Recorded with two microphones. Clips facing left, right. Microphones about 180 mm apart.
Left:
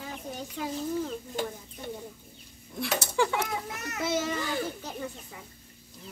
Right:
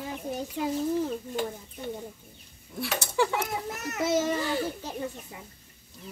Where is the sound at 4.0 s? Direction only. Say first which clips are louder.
Right 4 dB; 45° right (ahead or behind).